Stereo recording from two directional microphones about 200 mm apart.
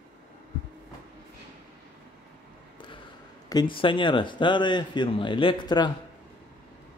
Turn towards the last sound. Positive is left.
turn(degrees=25)  # may be behind; listen again after turning